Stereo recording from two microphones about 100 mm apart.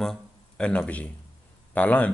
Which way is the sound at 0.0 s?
10° left (ahead or behind).